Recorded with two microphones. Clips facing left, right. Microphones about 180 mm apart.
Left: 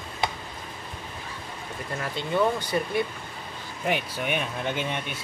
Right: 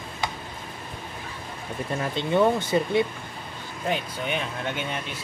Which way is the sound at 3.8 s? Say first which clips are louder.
Left 1 dB; 10° left (ahead or behind).